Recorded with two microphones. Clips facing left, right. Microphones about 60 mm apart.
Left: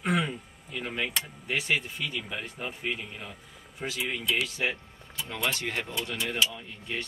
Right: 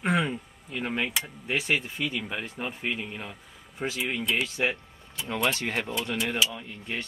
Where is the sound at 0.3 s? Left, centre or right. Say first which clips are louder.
Right 3 dB; right.